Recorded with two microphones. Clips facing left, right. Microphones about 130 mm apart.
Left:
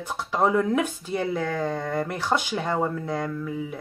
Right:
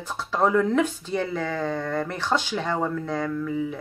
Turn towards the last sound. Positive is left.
turn(degrees=5)  # may be behind; listen again after turning